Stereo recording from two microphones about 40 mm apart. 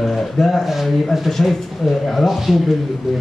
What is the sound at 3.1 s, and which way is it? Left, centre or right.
Speech, centre.